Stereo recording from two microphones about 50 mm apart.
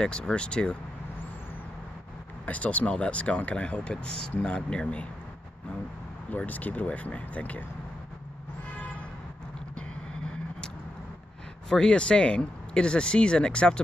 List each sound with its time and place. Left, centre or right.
0.0 s speech: centre
2.4 s speech: left
6.3 s speech: left
9.8 s vehicle: centre
11.7 s speech: centre